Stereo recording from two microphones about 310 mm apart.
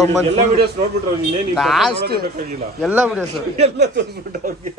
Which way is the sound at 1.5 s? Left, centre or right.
Centre.